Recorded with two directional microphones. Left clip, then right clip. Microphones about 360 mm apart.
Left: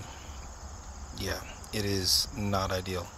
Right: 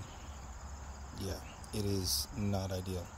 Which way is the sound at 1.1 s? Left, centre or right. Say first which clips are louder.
Left 8 dB; centre.